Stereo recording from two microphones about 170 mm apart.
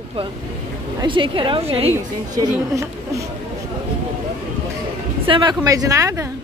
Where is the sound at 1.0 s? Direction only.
30° right (ahead or behind).